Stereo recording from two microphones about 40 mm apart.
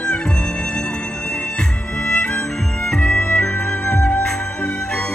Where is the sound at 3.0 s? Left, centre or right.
Left.